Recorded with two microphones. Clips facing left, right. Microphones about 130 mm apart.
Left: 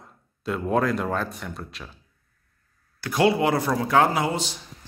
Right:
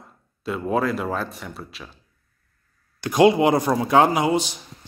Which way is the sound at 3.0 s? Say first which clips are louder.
Right 5 dB; 20° right (ahead or behind).